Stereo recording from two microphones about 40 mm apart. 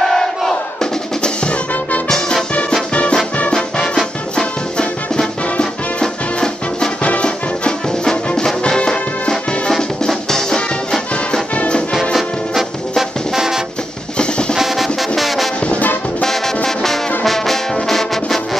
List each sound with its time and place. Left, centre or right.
0.0 s crowd: centre
1.2 s music: left
2.9 s music: left
3.8 s music: centre
7.0 s music: left; by 13.6 s centre
14.1 s drum: left
14.5 s music: centre
17.2 s brass instrument: centre
17.8 s music: centre